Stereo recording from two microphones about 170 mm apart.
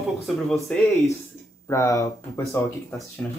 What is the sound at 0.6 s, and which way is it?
Speech, centre (ahead or behind).